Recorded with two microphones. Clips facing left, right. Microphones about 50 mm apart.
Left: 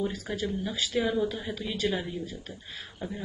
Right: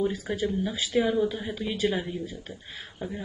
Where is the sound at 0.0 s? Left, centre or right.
Centre.